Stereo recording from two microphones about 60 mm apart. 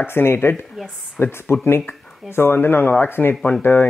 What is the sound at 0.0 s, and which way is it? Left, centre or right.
Speech, left.